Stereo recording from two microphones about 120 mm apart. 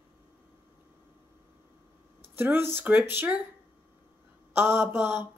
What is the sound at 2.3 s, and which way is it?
Speech, 15° right (ahead or behind).